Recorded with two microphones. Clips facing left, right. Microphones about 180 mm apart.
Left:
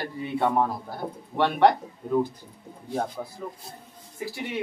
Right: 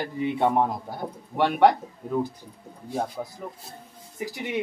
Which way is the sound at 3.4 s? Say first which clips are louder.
Left 1 dB; 10° right (ahead or behind).